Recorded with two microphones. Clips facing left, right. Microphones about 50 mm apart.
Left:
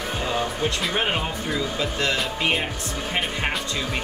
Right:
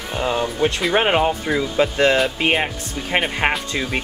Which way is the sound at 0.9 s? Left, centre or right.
Right.